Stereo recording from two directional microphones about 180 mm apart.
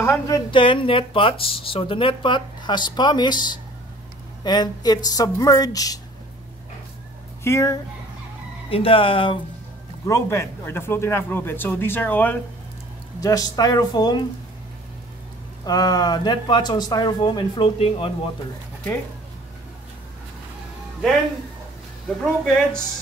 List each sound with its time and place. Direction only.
0.0 s a woman's voice: 15° left (ahead or behind)
0.5 s speech: 30° left (ahead or behind)
7.4 s speech: 15° left (ahead or behind)
8.6 s speech: 30° left (ahead or behind)
10.0 s speech: 15° left (ahead or behind)
15.6 s speech: 20° left (ahead or behind)
22.0 s speech: 5° left (ahead or behind)